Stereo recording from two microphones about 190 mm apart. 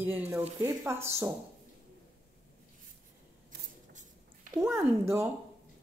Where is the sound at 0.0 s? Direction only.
10° right (ahead or behind).